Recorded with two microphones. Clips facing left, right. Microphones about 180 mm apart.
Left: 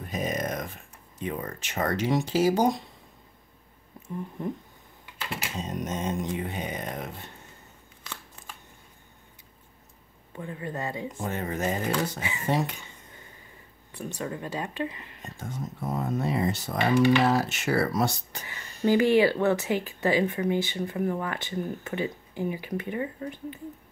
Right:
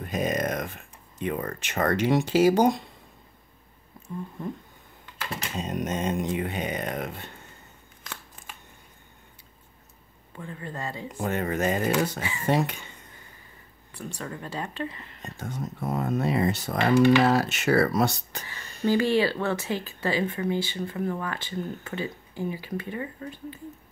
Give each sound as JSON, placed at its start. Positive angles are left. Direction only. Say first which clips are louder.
{"t": 0.0, "sound": "speech", "louder": "right 3 dB", "side_deg": -70}
{"t": 5.6, "sound": "speech", "louder": "right 3 dB", "side_deg": -70}
{"t": 10.3, "sound": "speech", "louder": "left 3 dB", "side_deg": 20}
{"t": 11.1, "sound": "speech", "louder": "right 7 dB", "side_deg": -70}
{"t": 12.2, "sound": "speech", "louder": "right 1 dB", "side_deg": 20}
{"t": 12.4, "sound": "speech", "louder": "right 3 dB", "side_deg": -65}
{"t": 13.9, "sound": "speech", "louder": "left 3 dB", "side_deg": 20}
{"t": 15.3, "sound": "speech", "louder": "right 2 dB", "side_deg": -70}
{"t": 18.5, "sound": "speech", "louder": "left 1 dB", "side_deg": 15}